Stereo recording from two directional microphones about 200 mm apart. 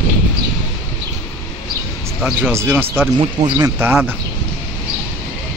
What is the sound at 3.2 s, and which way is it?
Speech, 25° right (ahead or behind).